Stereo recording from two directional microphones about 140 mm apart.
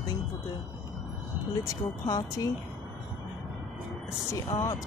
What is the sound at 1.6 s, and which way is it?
Speech, 25° left (ahead or behind).